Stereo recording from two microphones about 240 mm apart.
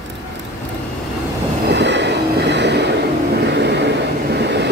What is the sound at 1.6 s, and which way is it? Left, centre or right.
Train, right.